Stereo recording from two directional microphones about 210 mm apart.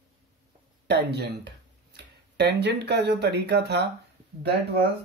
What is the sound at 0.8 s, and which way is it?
Speech, 55° right (ahead or behind).